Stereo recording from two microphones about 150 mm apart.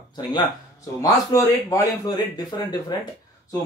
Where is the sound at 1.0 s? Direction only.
20° left (ahead or behind).